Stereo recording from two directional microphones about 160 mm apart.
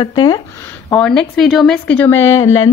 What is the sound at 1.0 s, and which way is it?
Speech, 5° left (ahead or behind).